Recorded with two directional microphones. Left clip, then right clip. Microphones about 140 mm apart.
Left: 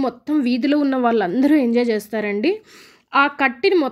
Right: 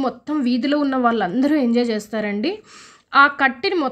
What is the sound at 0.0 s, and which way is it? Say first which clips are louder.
A woman's voice: left 1 dB; 20° left (ahead or behind).